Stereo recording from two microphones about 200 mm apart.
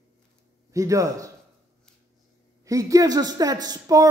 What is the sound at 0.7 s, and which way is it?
Speech, 15° right (ahead or behind).